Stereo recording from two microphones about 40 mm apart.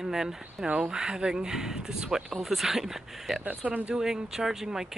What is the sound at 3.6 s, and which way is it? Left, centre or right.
Speech, right.